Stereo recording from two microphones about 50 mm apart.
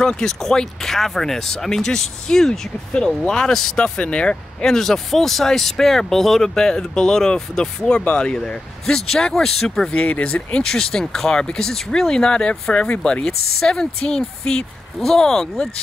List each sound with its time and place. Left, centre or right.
0.0 s speech: centre
4.0 s speech: left
4.7 s speech: centre
9.9 s speech: left
10.3 s speech: centre